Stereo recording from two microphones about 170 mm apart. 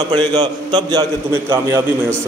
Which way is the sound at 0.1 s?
25° right (ahead or behind).